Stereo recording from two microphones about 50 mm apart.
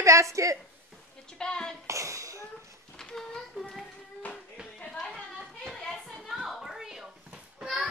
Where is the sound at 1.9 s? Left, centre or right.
Right.